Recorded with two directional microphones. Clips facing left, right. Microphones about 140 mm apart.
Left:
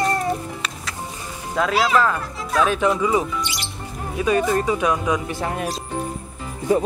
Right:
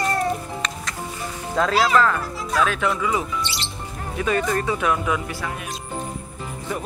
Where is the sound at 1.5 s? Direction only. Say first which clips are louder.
Even; 5° left (ahead or behind).